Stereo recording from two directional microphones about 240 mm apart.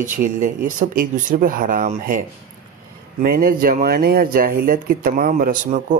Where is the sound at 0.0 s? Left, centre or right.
Right.